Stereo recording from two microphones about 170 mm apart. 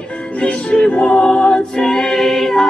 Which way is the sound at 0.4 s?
5° left (ahead or behind).